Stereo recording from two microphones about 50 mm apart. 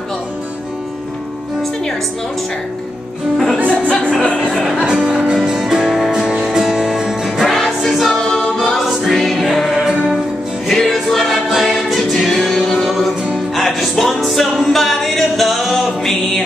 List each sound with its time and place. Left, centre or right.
3.5 s music: right
4.1 s music: centre
4.6 s music: centre
5.9 s music: centre
7.4 s music: centre
10.8 s music: centre